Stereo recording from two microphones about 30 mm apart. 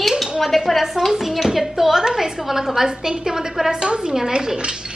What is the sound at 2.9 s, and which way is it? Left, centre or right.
Wind chime, right.